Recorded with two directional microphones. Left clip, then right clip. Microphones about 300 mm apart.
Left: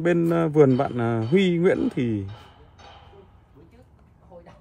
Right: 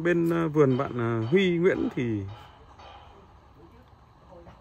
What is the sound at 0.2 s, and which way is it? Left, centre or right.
A man's voice, centre.